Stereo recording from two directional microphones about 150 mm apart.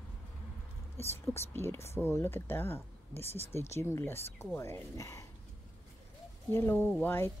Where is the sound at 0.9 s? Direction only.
15° left (ahead or behind).